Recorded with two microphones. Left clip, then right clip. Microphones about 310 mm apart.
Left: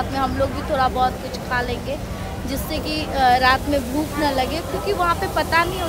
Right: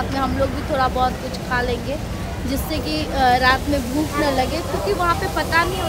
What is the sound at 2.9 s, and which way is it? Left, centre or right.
Speech, centre.